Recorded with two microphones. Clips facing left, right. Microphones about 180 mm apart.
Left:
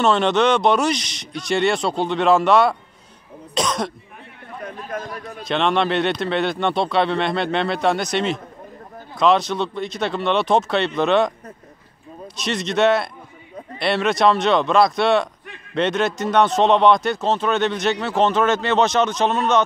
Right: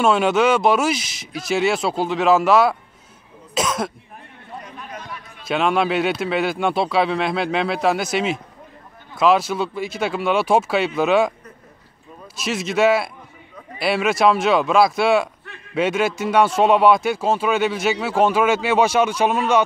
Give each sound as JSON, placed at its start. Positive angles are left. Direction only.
{"t": 0.0, "sound": "speech", "side_deg": -5}
{"t": 3.5, "sound": "cough", "side_deg": -5}
{"t": 4.9, "sound": "a sound", "side_deg": 40}
{"t": 5.5, "sound": "speech", "side_deg": -5}
{"t": 12.4, "sound": "speech", "side_deg": -5}